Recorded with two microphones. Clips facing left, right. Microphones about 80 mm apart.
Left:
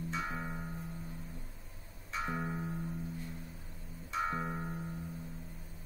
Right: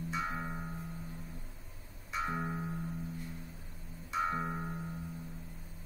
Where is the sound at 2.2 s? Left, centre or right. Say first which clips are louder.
Even; centre.